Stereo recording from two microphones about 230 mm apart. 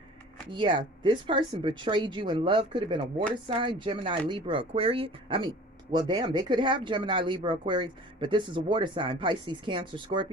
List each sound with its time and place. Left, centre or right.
0.5 s speech: right